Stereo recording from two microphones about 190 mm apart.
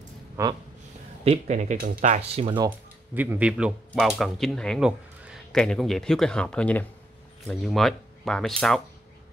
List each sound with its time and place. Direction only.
0.4 s a sound: 15° right (ahead or behind)
1.2 s speech: 35° right (ahead or behind)
3.2 s speech: 10° right (ahead or behind)